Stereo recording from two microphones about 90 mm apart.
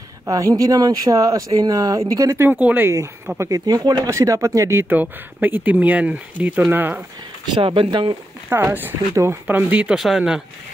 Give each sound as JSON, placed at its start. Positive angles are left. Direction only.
{"t": 0.3, "sound": "speech", "side_deg": -40}
{"t": 2.6, "sound": "speech", "side_deg": -20}
{"t": 3.3, "sound": "speech", "side_deg": -35}
{"t": 3.6, "sound": "speech", "side_deg": -50}
{"t": 4.1, "sound": "speech", "side_deg": -35}
{"t": 7.5, "sound": "speech", "side_deg": -75}
{"t": 8.5, "sound": "speech", "side_deg": -20}
{"t": 9.1, "sound": "speech", "side_deg": -35}
{"t": 9.5, "sound": "speech", "side_deg": -15}
{"t": 9.9, "sound": "speech", "side_deg": -5}